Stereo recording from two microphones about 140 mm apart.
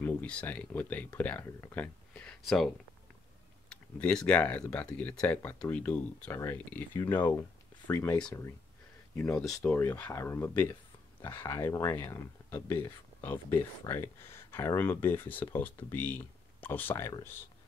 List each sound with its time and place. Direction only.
0.0 s speech: 10° left (ahead or behind)
9.1 s speech: 10° left (ahead or behind)